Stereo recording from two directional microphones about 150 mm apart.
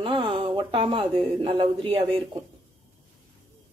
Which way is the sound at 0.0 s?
30° right (ahead or behind).